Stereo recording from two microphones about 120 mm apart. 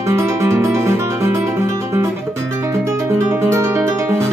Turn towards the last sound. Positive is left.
turn(degrees=-25)  # may be behind; listen again after turning